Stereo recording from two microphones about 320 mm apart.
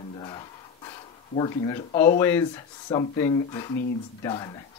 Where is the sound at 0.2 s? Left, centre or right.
Centre.